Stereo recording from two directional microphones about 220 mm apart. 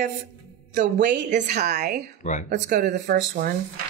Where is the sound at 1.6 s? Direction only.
50° right (ahead or behind).